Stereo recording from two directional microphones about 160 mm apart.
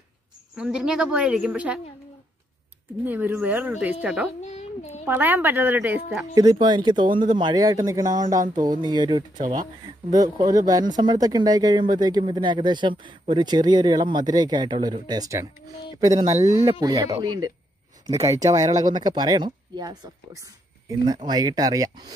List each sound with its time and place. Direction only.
0.6 s a woman's voice: 5° right (ahead or behind)
3.1 s a woman's voice: 10° right (ahead or behind)
4.4 s a sound: 45° left (ahead or behind)
5.0 s speech: 10° right (ahead or behind)
6.3 s speech: 25° right (ahead or behind)
16.3 s speech: 45° right (ahead or behind)
16.8 s speech: 25° right (ahead or behind)